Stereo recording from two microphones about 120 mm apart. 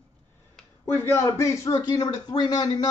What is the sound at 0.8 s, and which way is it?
Speech, 20° left (ahead or behind).